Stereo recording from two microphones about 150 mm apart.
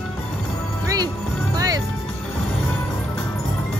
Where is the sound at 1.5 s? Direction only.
25° right (ahead or behind).